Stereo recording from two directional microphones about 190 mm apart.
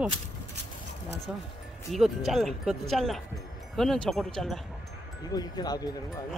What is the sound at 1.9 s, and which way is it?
Speech, centre (ahead or behind).